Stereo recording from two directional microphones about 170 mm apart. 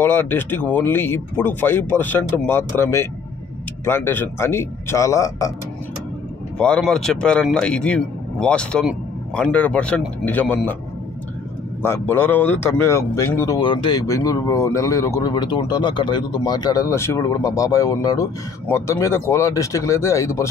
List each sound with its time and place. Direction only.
0.0 s speech: 10° left (ahead or behind)
6.6 s a man's voice: 5° left (ahead or behind)
11.8 s a man's voice: 15° left (ahead or behind)